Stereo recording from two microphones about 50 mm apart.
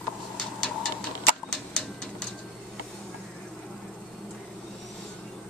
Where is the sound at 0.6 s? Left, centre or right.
Centre.